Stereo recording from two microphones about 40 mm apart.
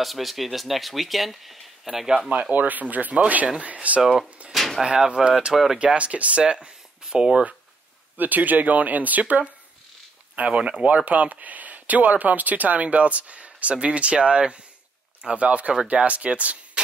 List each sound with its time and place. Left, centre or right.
0.0 s speech: centre
2.0 s speech: right
2.5 s speech: right
4.5 s drawer open or close: centre
4.8 s speech: centre
5.5 s speech: centre
5.9 s speech: right
8.2 s speech: right
15.3 s speech: right